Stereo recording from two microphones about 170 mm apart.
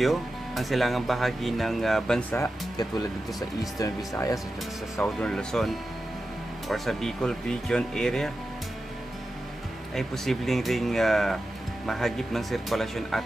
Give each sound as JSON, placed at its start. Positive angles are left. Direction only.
{"t": 0.0, "sound": "speech", "side_deg": 0}
{"t": 2.3, "sound": "speech", "side_deg": 20}
{"t": 5.0, "sound": "speech", "side_deg": 5}
{"t": 9.9, "sound": "speech", "side_deg": 0}